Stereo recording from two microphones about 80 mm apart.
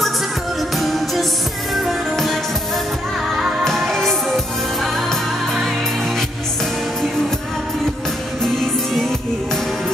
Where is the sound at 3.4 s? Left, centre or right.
Centre.